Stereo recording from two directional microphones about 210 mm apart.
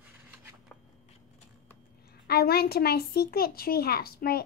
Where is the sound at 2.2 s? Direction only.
50° left (ahead or behind).